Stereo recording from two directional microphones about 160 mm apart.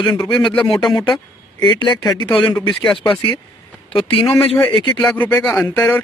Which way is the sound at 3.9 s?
35° left (ahead or behind).